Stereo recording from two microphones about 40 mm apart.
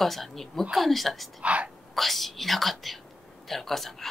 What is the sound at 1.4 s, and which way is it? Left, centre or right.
Speech, right.